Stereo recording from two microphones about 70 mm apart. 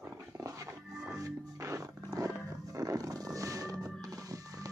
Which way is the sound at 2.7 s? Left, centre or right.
Right.